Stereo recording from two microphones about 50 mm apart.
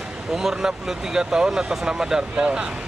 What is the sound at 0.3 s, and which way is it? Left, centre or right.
Speech, centre.